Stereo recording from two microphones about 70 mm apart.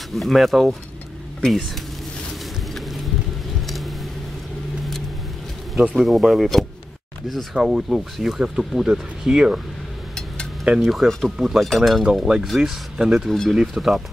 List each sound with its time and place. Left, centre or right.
0.1 s speech: centre
2.7 s vehicle: centre
5.9 s speech: centre
10.6 s speech: centre
11.1 s speech: centre
13.3 s speech: centre